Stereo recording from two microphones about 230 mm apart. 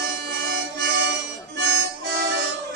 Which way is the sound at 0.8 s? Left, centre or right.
Right.